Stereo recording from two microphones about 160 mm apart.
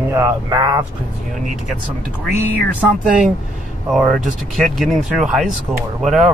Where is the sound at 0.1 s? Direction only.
20° right (ahead or behind).